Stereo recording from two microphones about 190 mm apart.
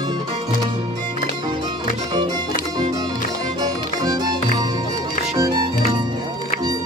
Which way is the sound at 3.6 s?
20° right (ahead or behind).